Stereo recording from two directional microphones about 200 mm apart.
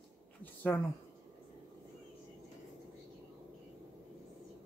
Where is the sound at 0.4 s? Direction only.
10° left (ahead or behind).